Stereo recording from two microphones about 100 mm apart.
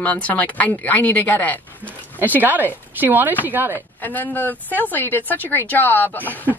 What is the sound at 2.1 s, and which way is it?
Speech, 20° right (ahead or behind).